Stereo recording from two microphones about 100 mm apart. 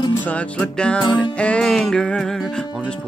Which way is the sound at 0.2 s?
15° left (ahead or behind).